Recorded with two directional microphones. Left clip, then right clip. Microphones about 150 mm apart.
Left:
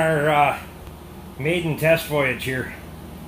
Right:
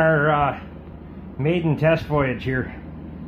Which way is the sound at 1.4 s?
20° right (ahead or behind).